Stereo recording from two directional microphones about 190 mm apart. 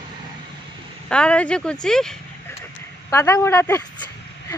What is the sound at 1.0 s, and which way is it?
Speech, 5° left (ahead or behind).